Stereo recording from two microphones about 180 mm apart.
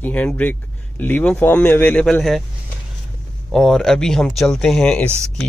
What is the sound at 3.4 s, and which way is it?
Speech, centre (ahead or behind).